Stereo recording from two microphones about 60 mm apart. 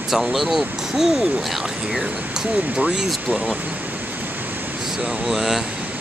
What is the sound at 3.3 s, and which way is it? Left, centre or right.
Speech, right.